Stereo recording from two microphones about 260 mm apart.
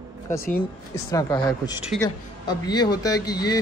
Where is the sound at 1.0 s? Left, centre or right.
Centre.